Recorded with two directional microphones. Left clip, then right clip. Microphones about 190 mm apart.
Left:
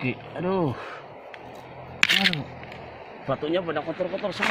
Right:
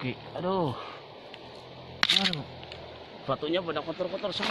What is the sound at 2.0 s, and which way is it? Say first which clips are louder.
Single-lens reflex camera: left 4 dB; 10° left (ahead or behind).